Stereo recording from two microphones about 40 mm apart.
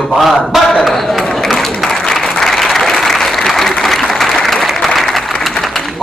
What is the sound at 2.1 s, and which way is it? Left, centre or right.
Applause, centre.